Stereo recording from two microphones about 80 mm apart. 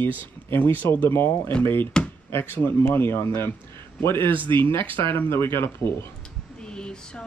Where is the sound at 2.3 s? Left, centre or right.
Left.